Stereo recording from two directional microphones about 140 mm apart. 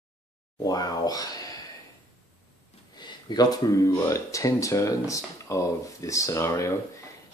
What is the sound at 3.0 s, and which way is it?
Speech, 30° left (ahead or behind).